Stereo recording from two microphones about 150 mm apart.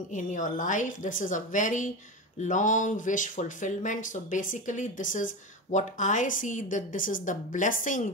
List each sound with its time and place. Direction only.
0.1 s speech: 60° left (ahead or behind)